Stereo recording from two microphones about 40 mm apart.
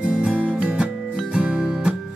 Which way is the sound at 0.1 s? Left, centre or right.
Right.